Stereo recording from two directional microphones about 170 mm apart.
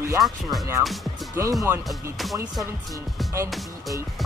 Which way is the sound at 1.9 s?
Centre (ahead or behind).